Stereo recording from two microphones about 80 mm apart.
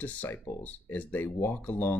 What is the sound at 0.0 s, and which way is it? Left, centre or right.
Speech, left.